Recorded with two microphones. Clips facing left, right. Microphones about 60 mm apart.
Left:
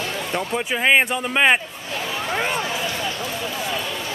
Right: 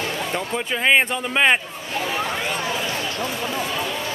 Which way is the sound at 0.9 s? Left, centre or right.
Centre.